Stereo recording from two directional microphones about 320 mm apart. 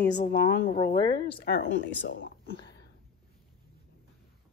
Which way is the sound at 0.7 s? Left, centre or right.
Centre.